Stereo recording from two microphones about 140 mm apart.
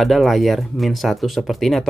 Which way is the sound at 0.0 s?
Centre (ahead or behind).